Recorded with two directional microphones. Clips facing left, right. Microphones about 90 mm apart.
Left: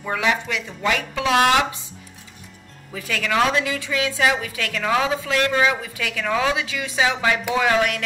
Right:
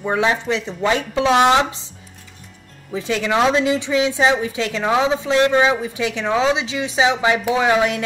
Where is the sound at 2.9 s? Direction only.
25° right (ahead or behind).